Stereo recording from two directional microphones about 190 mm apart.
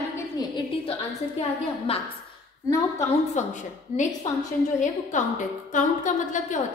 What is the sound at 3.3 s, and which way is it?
Speech, 40° left (ahead or behind).